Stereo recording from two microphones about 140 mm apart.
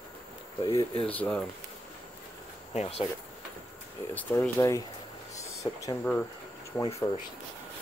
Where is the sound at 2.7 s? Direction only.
50° left (ahead or behind).